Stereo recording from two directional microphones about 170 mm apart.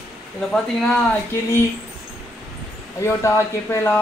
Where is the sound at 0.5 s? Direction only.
Centre (ahead or behind).